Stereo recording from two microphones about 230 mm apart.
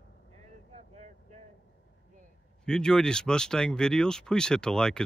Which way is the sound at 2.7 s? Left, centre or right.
Centre.